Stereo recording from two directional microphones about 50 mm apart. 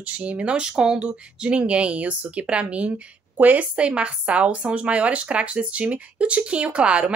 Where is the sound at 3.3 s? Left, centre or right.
Right.